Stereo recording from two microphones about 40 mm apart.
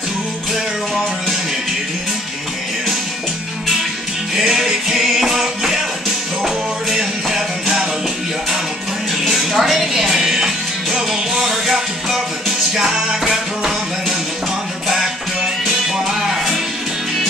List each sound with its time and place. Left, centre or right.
4.4 s music: centre
7.6 s music: centre
9.2 s music: centre
15.6 s music: centre